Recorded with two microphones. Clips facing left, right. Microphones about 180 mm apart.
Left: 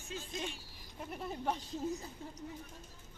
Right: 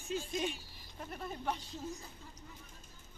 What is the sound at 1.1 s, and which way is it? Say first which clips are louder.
Speech: left 2 dB; 20° left (ahead or behind).